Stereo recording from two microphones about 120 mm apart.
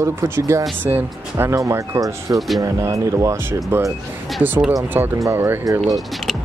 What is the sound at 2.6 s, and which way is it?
Speech, 25° right (ahead or behind).